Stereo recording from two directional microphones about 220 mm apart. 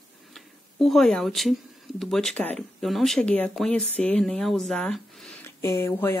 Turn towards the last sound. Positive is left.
turn(degrees=10)  # may be behind; listen again after turning